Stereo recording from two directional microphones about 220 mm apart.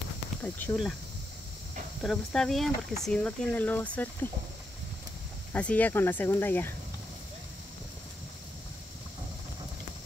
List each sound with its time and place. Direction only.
0.4 s speech: 10° left (ahead or behind)
2.0 s speech: centre (ahead or behind)
5.5 s speech: 5° left (ahead or behind)